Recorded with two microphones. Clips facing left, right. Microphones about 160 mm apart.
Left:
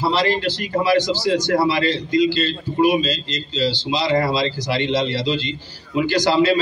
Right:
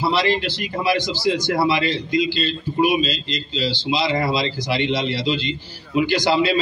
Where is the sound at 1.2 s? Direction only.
15° right (ahead or behind).